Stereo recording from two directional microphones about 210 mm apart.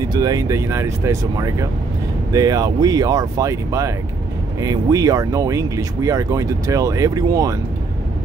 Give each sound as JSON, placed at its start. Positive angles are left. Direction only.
{"t": 0.1, "sound": "speech", "side_deg": -20}